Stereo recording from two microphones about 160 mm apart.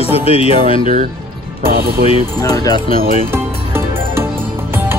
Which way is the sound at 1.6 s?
70° right (ahead or behind).